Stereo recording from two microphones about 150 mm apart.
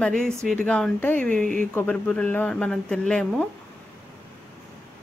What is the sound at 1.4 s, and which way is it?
Speech, 60° right (ahead or behind).